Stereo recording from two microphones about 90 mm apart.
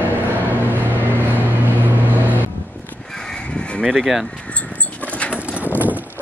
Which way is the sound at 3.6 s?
10° left (ahead or behind).